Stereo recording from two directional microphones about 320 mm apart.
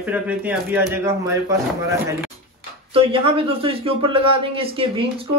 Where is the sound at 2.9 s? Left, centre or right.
Centre.